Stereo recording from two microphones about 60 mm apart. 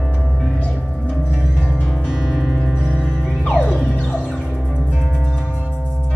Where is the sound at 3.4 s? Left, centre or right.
Centre.